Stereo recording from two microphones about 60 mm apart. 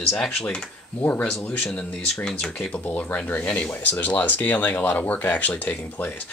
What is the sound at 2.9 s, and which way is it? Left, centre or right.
Speech, left.